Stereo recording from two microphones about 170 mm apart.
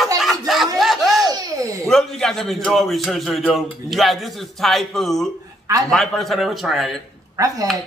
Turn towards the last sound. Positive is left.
turn(degrees=-20)  # may be behind; listen again after turning